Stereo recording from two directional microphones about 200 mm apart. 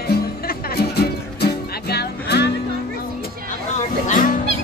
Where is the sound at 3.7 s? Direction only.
40° left (ahead or behind).